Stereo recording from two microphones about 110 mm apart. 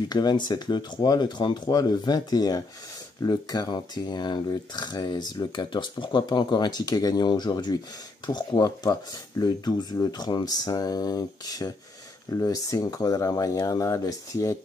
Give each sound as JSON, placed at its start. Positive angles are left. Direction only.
{"t": 0.1, "sound": "speech", "side_deg": 40}